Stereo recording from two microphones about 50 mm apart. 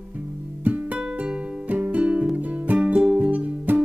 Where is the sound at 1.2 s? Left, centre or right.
Centre.